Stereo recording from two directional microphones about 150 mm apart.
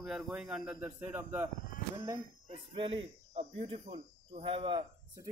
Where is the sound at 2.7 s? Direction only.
35° right (ahead or behind).